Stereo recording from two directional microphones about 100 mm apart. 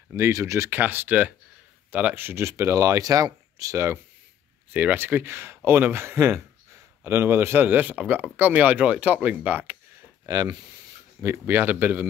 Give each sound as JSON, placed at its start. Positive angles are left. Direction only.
{"t": 0.1, "sound": "speech", "side_deg": -30}
{"t": 0.7, "sound": "speech", "side_deg": -20}
{"t": 4.7, "sound": "speech", "side_deg": -20}
{"t": 10.2, "sound": "speech", "side_deg": -40}
{"t": 11.2, "sound": "speech", "side_deg": -25}